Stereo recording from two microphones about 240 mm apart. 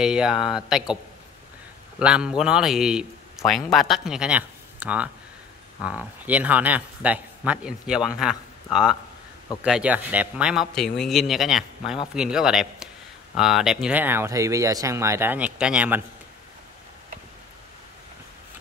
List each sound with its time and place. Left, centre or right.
0.0 s a man's voice: centre
2.0 s a man's voice: centre